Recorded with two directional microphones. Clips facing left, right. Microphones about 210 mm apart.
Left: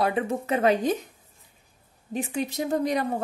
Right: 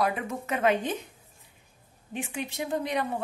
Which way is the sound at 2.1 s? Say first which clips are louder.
Left 5 dB; 40° left (ahead or behind).